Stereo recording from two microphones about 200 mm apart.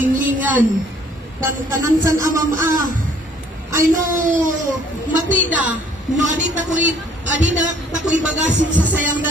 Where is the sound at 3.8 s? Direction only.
40° right (ahead or behind).